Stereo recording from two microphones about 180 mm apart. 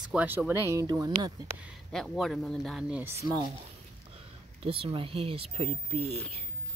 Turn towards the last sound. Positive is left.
turn(degrees=-35)  # may be behind; listen again after turning